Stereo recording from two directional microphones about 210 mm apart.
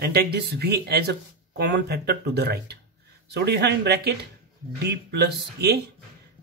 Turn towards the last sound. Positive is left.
turn(degrees=-50)  # may be behind; listen again after turning